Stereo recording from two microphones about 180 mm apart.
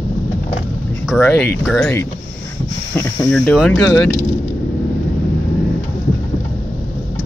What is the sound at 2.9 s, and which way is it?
Speech, 15° left (ahead or behind).